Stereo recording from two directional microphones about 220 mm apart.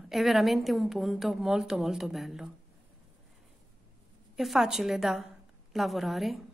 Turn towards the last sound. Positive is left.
turn(degrees=0)  # may be behind; listen again after turning